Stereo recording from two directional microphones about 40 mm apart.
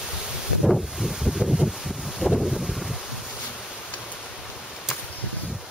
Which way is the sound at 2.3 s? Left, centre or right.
Centre.